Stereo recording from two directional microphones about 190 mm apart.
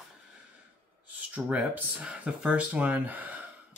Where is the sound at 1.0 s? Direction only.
10° right (ahead or behind).